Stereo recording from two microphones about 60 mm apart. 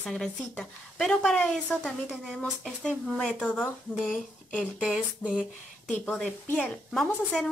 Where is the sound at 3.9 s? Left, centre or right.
Centre.